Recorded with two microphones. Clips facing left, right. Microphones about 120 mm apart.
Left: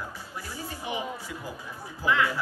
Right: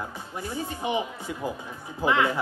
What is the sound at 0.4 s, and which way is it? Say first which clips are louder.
A woman's voice: right 7 dB; 20° right (ahead or behind).